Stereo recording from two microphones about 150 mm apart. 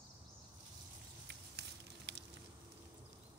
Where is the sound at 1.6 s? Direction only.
90° right.